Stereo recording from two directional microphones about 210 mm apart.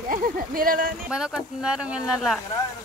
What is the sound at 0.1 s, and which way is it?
Speech, 40° right (ahead or behind).